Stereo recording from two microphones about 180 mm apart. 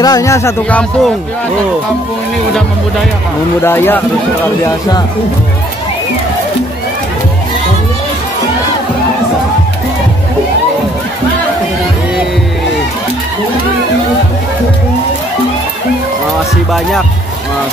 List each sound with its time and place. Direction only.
0.0 s speech: 20° left (ahead or behind)
3.6 s speech: 10° left (ahead or behind)